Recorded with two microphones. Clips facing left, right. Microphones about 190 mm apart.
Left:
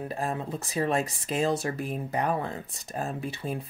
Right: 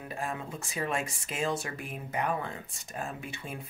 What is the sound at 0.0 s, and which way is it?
Speech, 35° left (ahead or behind).